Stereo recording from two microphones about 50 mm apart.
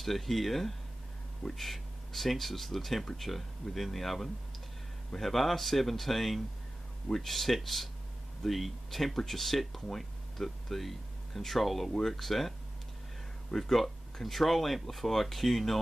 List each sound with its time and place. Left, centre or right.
0.0 s speech: centre